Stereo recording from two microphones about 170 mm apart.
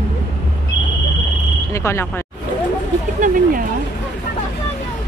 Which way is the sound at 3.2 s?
55° right (ahead or behind).